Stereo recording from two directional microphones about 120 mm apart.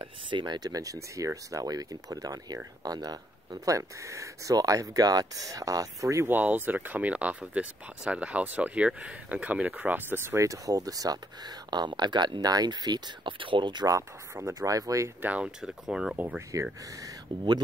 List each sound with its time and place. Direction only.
0.0 s speech: 40° right (ahead or behind)
13.9 s speech: 25° right (ahead or behind)
15.2 s speech: 10° right (ahead or behind)